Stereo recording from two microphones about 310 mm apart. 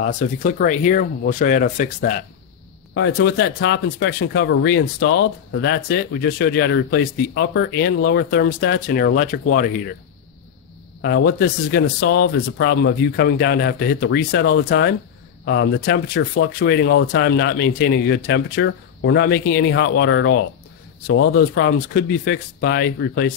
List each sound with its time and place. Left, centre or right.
0.0 s speech: left
11.0 s speech: left